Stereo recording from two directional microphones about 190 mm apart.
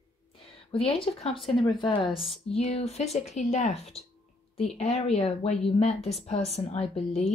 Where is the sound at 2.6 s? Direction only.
35° left (ahead or behind).